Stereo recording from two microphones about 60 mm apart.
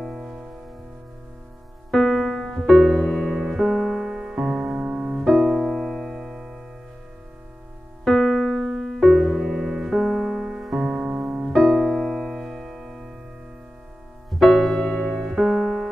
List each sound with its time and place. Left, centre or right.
0.0 s music: centre
1.9 s music: centre
3.4 s music: centre
4.7 s music: right
5.2 s music: centre
8.0 s keyboard: centre
9.0 s music: centre
10.9 s music: right
11.9 s music: centre
14.3 s music: centre